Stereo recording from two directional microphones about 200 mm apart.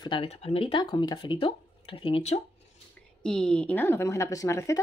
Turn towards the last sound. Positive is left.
turn(degrees=15)  # may be behind; listen again after turning